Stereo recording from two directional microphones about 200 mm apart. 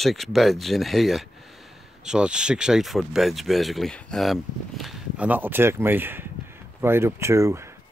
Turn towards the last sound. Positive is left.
turn(degrees=-15)  # may be behind; listen again after turning